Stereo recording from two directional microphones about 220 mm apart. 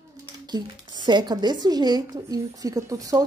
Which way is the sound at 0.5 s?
20° right (ahead or behind).